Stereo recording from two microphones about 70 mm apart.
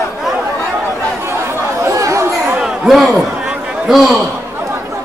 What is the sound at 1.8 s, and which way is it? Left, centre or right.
Chatter, right.